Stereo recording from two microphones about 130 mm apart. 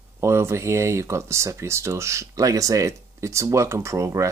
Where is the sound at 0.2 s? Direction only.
20° right (ahead or behind).